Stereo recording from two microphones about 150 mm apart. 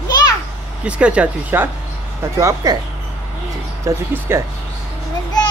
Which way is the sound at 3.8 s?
15° right (ahead or behind).